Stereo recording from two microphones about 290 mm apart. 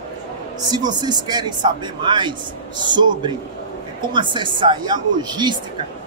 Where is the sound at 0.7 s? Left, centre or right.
Centre.